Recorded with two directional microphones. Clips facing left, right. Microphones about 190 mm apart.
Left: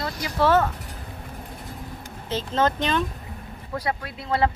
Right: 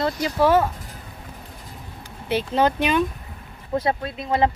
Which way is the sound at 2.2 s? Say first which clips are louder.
Right 3 dB; 15° right (ahead or behind).